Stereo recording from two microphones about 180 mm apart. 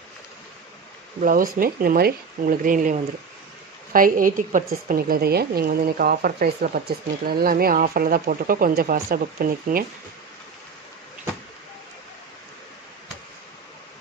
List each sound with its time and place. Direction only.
1.2 s a woman's voice: 50° right (ahead or behind)